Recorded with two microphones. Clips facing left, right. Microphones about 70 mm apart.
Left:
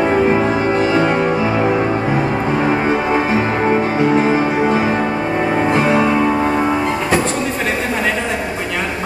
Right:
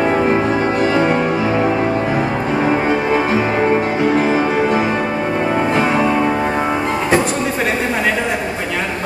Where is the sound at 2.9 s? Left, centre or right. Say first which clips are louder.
Even; left.